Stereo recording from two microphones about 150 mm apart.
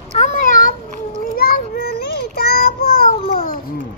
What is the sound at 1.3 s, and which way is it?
Child singing, 85° left.